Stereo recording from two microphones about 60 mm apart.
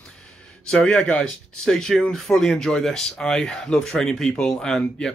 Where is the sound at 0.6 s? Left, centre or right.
Centre.